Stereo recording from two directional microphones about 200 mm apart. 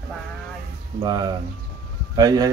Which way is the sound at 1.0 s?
20° right (ahead or behind).